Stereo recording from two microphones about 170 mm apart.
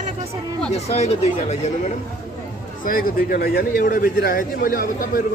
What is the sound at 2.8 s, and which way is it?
A man's voice, 55° left (ahead or behind).